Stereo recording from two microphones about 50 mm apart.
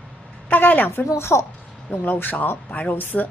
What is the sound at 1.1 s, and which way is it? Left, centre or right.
Speech, left.